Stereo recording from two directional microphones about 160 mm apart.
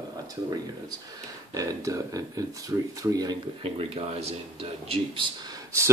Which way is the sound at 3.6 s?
35° right (ahead or behind).